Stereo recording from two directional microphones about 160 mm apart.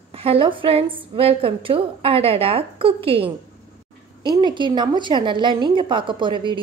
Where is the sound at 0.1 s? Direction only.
35° right (ahead or behind).